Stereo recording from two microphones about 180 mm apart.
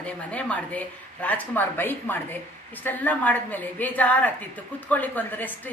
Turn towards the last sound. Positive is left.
turn(degrees=10)  # may be behind; listen again after turning